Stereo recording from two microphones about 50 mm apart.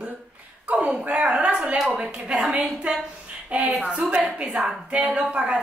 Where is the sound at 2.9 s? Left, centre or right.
Right.